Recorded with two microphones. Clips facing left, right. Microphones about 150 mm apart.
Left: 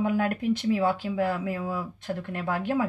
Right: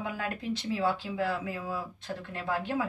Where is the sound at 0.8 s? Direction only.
50° left (ahead or behind).